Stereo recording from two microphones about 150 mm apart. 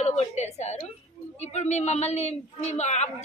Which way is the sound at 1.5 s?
50° left (ahead or behind).